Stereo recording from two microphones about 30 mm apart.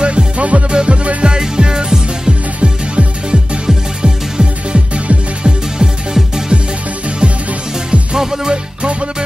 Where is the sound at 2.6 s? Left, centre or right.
Right.